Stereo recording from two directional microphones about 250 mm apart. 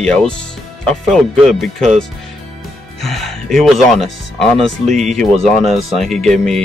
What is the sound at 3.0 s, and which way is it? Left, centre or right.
Speech, centre.